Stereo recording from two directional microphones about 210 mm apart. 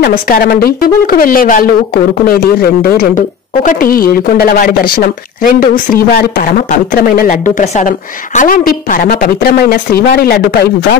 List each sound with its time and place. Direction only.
0.0 s a woman's voice: 45° left (ahead or behind)